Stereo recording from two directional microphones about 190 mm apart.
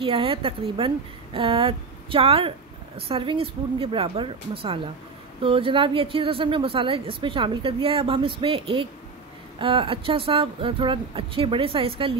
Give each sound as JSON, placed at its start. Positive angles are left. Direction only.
{"t": 0.0, "sound": "speech", "side_deg": -30}